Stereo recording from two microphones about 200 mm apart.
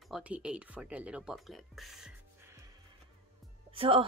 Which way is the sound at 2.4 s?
15° right (ahead or behind).